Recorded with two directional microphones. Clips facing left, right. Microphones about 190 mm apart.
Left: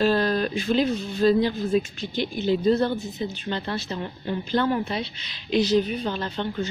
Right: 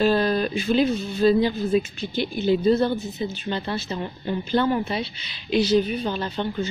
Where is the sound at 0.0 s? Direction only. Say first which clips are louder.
Right 1 dB; 5° right (ahead or behind).